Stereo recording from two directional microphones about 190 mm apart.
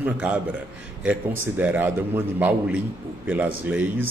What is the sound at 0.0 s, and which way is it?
A man's voice, 10° right (ahead or behind).